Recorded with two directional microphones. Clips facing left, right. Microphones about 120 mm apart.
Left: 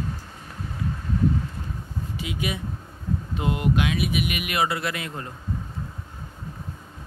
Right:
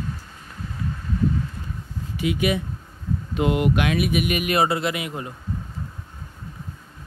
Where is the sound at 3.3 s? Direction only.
75° right (ahead or behind); by 4.8 s 35° right (ahead or behind).